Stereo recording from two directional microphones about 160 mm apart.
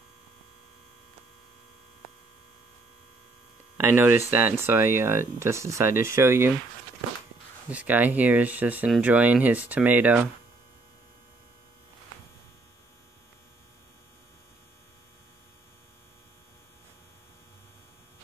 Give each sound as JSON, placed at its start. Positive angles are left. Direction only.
{"t": 3.7, "sound": "speech", "side_deg": -15}
{"t": 7.7, "sound": "speech", "side_deg": -10}